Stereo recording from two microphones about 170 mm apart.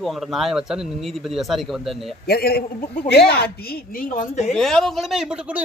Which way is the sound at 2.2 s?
65° left (ahead or behind).